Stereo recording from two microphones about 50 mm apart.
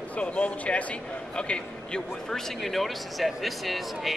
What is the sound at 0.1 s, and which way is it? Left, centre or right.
A man's voice, left.